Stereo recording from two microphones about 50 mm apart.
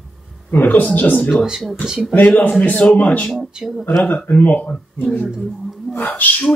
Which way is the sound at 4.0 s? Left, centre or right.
Left.